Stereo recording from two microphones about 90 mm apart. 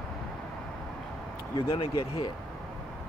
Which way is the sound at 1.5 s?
90° left.